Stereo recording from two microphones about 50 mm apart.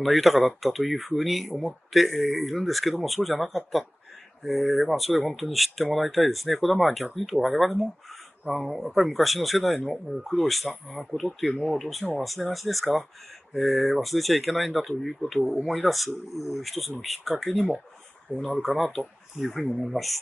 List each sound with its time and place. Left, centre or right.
0.0 s speech: centre